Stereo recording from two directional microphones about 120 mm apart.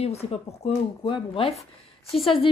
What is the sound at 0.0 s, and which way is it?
Speech, 60° left (ahead or behind).